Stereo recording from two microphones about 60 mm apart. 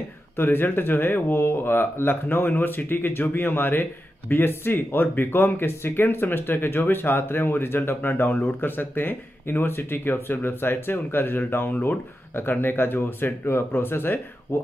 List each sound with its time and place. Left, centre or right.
0.4 s speech: left